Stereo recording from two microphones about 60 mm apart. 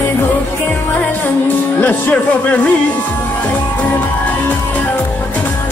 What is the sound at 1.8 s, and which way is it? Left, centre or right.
Speech, left.